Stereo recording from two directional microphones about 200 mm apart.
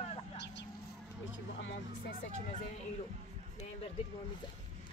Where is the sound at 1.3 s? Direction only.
70° left (ahead or behind).